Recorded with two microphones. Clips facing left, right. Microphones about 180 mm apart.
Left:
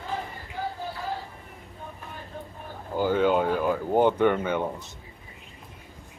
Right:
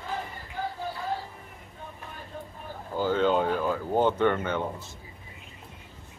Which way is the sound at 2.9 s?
10° left (ahead or behind).